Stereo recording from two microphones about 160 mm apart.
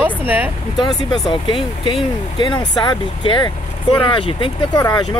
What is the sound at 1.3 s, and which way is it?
Speech, 30° left (ahead or behind).